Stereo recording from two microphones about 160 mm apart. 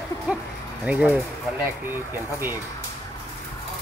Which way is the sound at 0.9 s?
10° right (ahead or behind).